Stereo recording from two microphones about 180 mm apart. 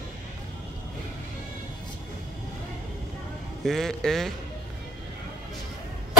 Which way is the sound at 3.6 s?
Centre (ahead or behind).